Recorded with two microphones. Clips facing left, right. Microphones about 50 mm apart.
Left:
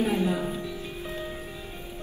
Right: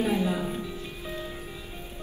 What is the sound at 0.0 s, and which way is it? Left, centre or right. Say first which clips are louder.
Music: left 1 dB; left.